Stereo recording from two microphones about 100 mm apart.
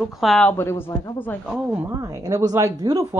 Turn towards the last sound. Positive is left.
turn(degrees=-35)  # may be behind; listen again after turning